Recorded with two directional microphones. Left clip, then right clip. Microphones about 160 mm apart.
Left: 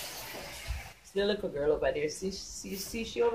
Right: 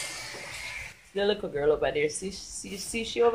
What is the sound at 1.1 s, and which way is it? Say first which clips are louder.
Speech: right 3 dB; 45° right (ahead or behind).